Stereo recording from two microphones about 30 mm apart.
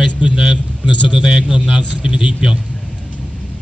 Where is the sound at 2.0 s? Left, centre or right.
Right.